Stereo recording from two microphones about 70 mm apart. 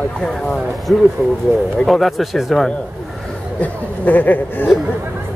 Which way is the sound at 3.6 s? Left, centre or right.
Left.